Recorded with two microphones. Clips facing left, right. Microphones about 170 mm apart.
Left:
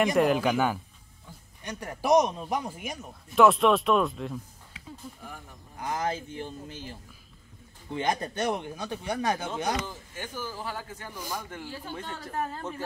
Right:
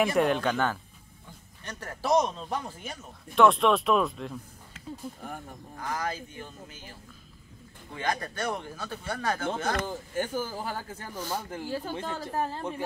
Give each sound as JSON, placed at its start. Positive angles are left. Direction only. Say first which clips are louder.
{"t": 0.0, "sound": "speech", "louder": "left 1 dB", "side_deg": 0}
{"t": 3.3, "sound": "speech", "louder": "left 1 dB", "side_deg": 0}
{"t": 5.8, "sound": "speech", "louder": "left 3 dB", "side_deg": 20}
{"t": 9.8, "sound": "speech", "louder": "right 8 dB", "side_deg": -45}